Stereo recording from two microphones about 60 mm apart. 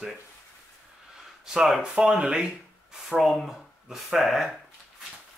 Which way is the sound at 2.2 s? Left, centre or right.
Centre.